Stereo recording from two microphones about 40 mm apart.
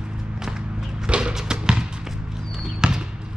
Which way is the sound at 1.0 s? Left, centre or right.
Right.